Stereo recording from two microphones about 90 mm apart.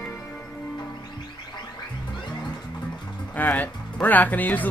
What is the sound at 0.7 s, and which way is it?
Music, 55° left (ahead or behind).